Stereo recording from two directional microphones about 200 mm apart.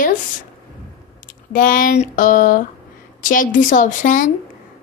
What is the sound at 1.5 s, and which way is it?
A woman's voice, 45° left (ahead or behind).